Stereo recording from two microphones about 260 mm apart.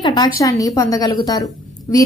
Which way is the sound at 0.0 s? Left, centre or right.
Centre.